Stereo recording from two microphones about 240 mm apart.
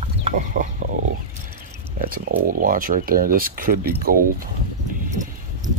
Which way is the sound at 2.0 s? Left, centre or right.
Right.